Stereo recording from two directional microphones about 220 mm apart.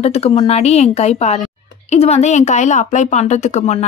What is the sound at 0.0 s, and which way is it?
A woman's voice, 30° left (ahead or behind).